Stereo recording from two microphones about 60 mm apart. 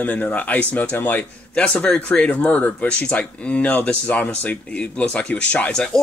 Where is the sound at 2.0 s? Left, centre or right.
Centre.